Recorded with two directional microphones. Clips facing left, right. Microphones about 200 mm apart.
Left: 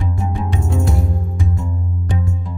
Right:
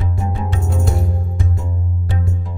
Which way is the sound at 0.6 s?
Centre (ahead or behind).